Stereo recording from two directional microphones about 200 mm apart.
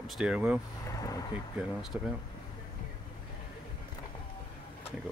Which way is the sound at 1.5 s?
Centre (ahead or behind).